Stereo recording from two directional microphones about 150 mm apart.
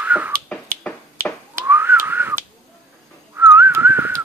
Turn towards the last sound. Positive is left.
turn(degrees=-15)  # may be behind; listen again after turning